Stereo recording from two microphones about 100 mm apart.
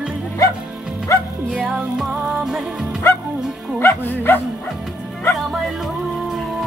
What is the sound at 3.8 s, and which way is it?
Speech, 25° left (ahead or behind).